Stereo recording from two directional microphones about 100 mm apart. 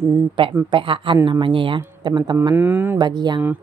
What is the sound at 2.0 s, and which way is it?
Speech, 45° right (ahead or behind).